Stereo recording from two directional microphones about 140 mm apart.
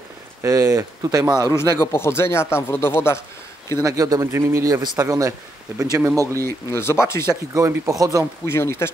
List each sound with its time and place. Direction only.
0.4 s speech: 20° right (ahead or behind)
1.5 s speech: 20° left (ahead or behind)
3.7 s speech: 25° right (ahead or behind)
5.8 s speech: 5° right (ahead or behind)
6.4 s speech: 20° left (ahead or behind)
7.5 s speech: 25° right (ahead or behind)
8.5 s speech: 20° left (ahead or behind)